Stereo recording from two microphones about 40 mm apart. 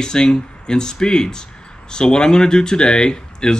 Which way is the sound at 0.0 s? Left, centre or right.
Centre.